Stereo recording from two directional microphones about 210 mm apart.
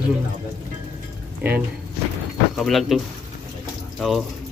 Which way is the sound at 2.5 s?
Centre (ahead or behind).